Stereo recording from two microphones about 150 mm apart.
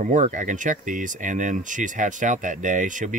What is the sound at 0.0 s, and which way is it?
Speech, 55° right (ahead or behind).